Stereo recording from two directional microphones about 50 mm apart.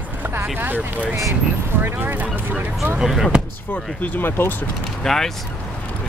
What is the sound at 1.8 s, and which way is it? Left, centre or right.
Speech, right.